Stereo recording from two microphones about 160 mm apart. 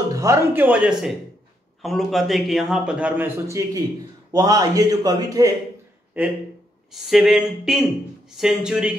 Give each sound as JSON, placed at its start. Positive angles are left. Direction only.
{"t": 0.1, "sound": "a man's voice", "side_deg": -20}
{"t": 6.2, "sound": "a man's voice", "side_deg": -10}